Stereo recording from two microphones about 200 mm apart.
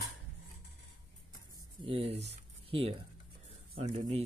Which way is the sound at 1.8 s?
30° right (ahead or behind).